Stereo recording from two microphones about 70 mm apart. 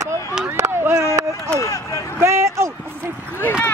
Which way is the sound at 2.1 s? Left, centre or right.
Right.